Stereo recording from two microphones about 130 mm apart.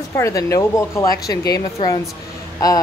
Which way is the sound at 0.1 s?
25° left (ahead or behind).